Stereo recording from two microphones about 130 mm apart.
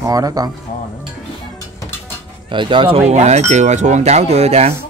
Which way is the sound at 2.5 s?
40° right (ahead or behind).